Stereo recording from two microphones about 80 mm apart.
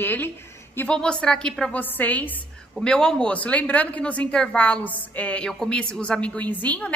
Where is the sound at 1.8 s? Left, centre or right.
Left.